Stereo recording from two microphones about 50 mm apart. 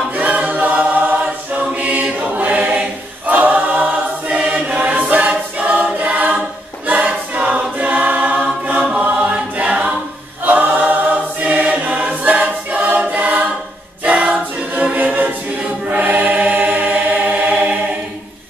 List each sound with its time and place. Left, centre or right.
0.1 s choir: right
9.3 s a capella: right
10.4 s choir: right
14.0 s choir: centre
15.0 s choir: right